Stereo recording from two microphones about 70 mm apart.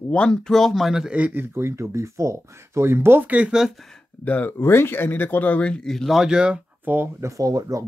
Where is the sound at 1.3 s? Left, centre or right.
Right.